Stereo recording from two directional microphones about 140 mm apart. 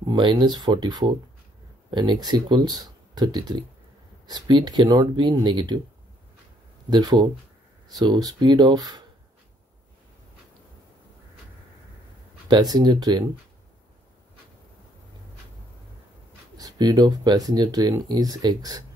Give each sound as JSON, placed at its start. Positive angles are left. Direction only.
{"t": 0.0, "sound": "speech", "side_deg": -35}
{"t": 6.9, "sound": "speech", "side_deg": -30}
{"t": 12.4, "sound": "speech", "side_deg": -30}
{"t": 16.5, "sound": "speech", "side_deg": -30}